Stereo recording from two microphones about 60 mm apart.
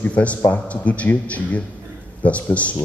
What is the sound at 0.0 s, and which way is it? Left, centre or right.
A man's voice, left.